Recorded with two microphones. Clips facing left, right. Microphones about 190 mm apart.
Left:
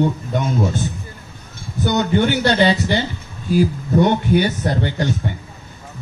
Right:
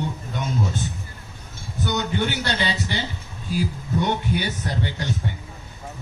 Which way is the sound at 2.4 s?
55° left (ahead or behind).